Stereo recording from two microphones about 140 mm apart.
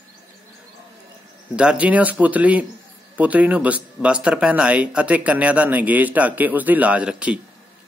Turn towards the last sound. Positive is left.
turn(degrees=-10)  # may be behind; listen again after turning